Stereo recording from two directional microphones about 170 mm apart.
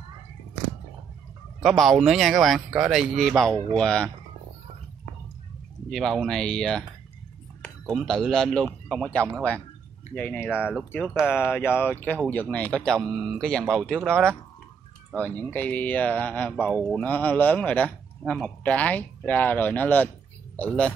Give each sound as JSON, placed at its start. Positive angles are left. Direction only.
{"t": 1.6, "sound": "speech", "side_deg": 0}
{"t": 5.9, "sound": "a man's voice", "side_deg": 0}
{"t": 10.5, "sound": "speech", "side_deg": -5}
{"t": 11.5, "sound": "speech", "side_deg": 10}